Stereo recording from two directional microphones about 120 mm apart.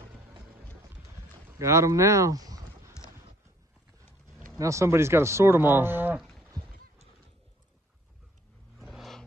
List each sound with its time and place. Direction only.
1.6 s speech: 25° right (ahead or behind)
4.6 s speech: 25° right (ahead or behind)
8.7 s vehicle: centre (ahead or behind)